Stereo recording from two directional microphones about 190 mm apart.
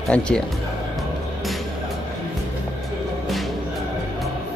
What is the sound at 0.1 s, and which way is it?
Speech, 5° left (ahead or behind).